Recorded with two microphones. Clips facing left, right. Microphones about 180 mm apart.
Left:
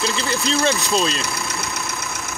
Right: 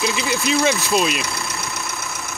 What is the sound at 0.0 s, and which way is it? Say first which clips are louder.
Speech: right 1 dB; 15° right (ahead or behind).